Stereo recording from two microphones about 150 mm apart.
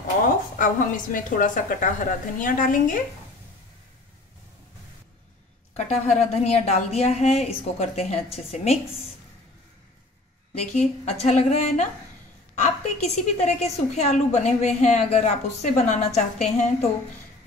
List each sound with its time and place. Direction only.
0.6 s a woman's voice: 65° left (ahead or behind)
5.8 s a woman's voice: 45° left (ahead or behind)
10.6 s a woman's voice: 45° left (ahead or behind)